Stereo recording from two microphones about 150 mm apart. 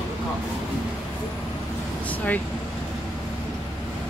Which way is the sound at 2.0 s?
10° left (ahead or behind).